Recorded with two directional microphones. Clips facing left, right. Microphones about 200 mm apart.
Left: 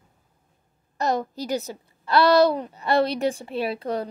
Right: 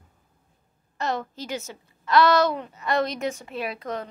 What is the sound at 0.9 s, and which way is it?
A woman's voice, 40° left (ahead or behind).